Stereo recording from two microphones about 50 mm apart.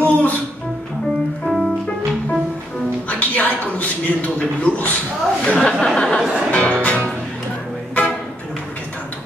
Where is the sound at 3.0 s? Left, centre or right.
Left.